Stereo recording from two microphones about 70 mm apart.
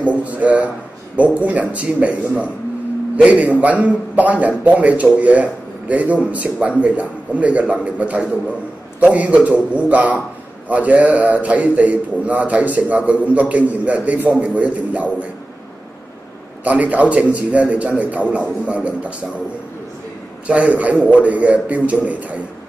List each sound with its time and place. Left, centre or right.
0.0 s a man's voice: right
16.6 s a man's voice: right
20.4 s a man's voice: centre